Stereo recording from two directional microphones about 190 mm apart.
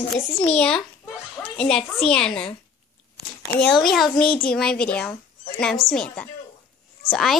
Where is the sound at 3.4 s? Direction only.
10° left (ahead or behind).